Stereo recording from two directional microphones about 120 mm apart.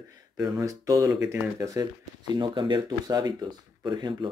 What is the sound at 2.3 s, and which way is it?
Speech, 40° right (ahead or behind).